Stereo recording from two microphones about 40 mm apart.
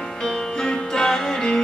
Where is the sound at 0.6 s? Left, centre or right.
Centre.